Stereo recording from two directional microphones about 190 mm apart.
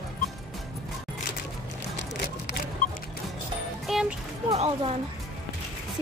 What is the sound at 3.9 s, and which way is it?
Music, centre (ahead or behind).